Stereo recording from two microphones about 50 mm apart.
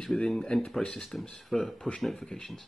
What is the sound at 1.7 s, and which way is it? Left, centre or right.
Speech, centre.